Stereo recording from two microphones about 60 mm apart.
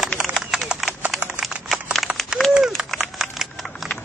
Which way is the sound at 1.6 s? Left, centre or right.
Centre.